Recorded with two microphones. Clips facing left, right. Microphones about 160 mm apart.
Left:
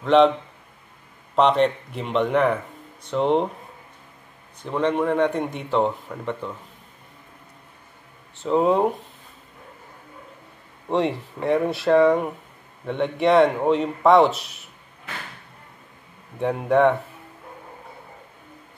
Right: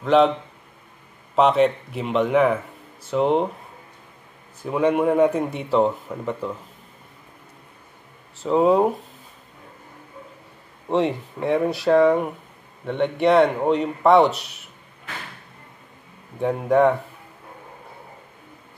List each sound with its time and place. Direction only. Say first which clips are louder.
0.0 s speech: left 1 dB; centre (ahead or behind)
1.3 s speech: right 1 dB; 5° right (ahead or behind)
4.6 s speech: right 2 dB; 10° right (ahead or behind)
8.4 s speech: right 2 dB; centre (ahead or behind)
10.9 s speech: right 1 dB; centre (ahead or behind)
16.3 s speech: right 1 dB; centre (ahead or behind)